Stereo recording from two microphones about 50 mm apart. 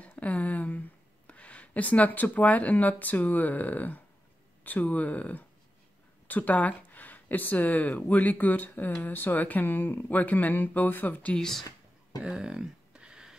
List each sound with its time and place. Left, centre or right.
0.2 s speech: left
11.3 s speech: centre
12.2 s a sound: centre